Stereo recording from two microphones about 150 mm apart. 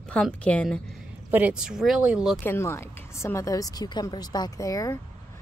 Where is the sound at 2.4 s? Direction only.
15° left (ahead or behind).